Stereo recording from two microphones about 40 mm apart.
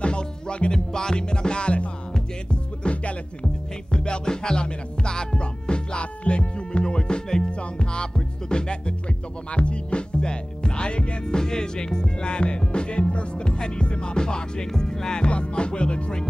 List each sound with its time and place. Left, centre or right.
0.0 s music: left
15.2 s music: left